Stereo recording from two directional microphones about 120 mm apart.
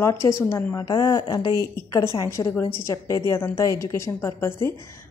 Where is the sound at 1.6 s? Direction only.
20° left (ahead or behind).